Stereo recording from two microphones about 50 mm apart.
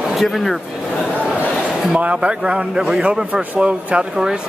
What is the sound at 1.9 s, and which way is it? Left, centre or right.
A man's voice, right.